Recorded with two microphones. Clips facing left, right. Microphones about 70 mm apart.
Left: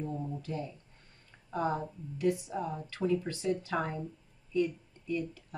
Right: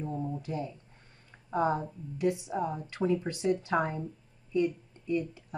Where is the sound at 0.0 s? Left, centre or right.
Right.